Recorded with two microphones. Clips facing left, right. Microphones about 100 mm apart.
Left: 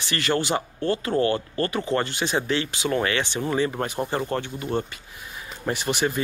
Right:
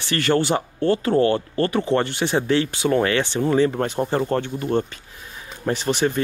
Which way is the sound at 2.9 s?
45° right (ahead or behind).